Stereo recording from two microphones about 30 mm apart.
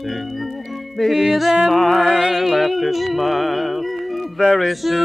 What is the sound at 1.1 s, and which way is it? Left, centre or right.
Music, centre.